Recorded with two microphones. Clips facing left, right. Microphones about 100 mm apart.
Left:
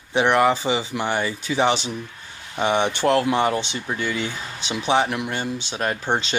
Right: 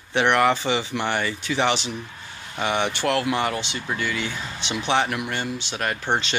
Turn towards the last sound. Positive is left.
turn(degrees=20)  # may be behind; listen again after turning